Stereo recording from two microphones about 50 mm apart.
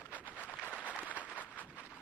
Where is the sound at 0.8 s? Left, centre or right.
Left.